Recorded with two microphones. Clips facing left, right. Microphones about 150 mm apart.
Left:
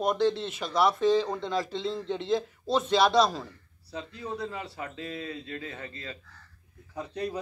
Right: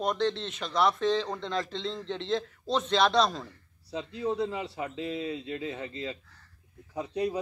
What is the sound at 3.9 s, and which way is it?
A man's voice, 20° right (ahead or behind).